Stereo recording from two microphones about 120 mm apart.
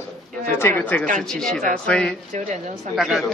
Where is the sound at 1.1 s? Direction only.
5° left (ahead or behind).